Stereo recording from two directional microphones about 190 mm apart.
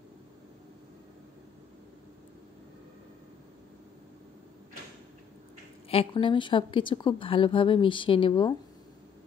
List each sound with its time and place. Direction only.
5.9 s a woman's voice: 30° left (ahead or behind)